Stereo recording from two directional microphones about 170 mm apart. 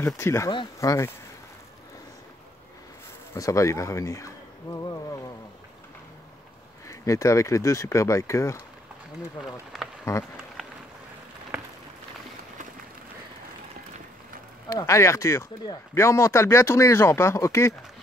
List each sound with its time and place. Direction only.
0.0 s speech: 15° left (ahead or behind)
3.3 s speech: 20° left (ahead or behind)
6.9 s speech: 20° left (ahead or behind)
9.4 s speech: centre (ahead or behind)
10.1 s speech: 20° left (ahead or behind)
11.5 s a sound: 10° right (ahead or behind)
14.7 s speech: 20° left (ahead or behind)